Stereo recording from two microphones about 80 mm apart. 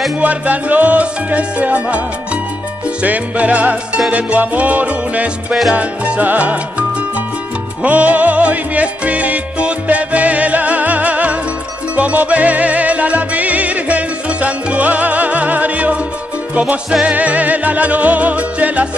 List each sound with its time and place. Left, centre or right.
0.2 s music: centre
7.8 s music: centre